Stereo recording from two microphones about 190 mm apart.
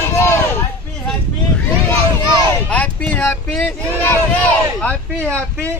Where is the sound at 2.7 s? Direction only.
5° left (ahead or behind).